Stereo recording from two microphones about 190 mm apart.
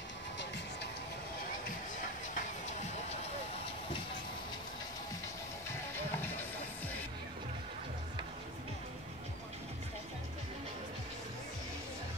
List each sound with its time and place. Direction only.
2.3 s music: 40° left (ahead or behind)
5.7 s music: 10° left (ahead or behind)